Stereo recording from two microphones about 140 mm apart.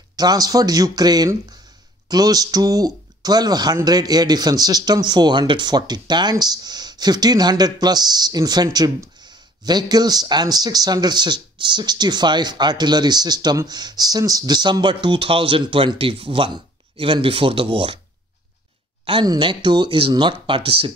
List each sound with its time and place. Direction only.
0.1 s speech: 30° right (ahead or behind)
19.0 s speech: 40° right (ahead or behind)